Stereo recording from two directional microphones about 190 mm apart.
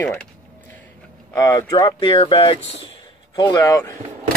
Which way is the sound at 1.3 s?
15° left (ahead or behind).